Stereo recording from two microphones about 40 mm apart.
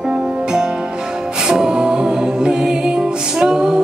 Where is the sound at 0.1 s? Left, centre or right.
Centre.